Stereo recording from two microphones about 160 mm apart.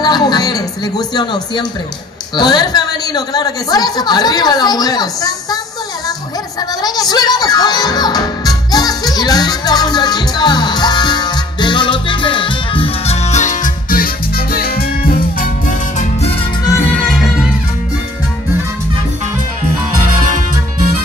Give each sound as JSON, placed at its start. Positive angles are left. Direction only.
{"t": 0.0, "sound": "a sound", "side_deg": 25}
{"t": 2.3, "sound": "a woman's voice", "side_deg": 25}
{"t": 6.8, "sound": "music", "side_deg": 25}
{"t": 17.0, "sound": "music", "side_deg": 0}